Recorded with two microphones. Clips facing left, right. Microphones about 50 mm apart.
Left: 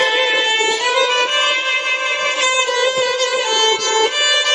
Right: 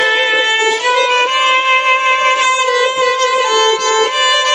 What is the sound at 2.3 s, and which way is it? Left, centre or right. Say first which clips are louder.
Music: right 5 dB; centre.